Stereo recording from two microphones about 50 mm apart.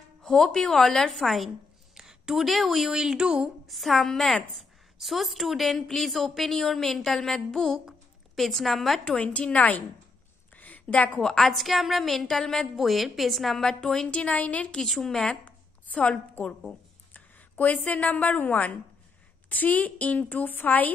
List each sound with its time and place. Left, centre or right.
0.2 s a woman's voice: centre
2.0 s a woman's voice: centre
3.6 s a woman's voice: centre
9.0 s a woman's voice: left
10.5 s a sound: left
11.2 s a woman's voice: centre
13.7 s speech: centre
14.1 s a woman's voice: left
14.8 s speech: centre
15.4 s a sound: left
17.1 s a woman's voice: left